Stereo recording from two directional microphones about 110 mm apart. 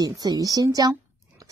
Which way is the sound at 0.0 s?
35° right (ahead or behind).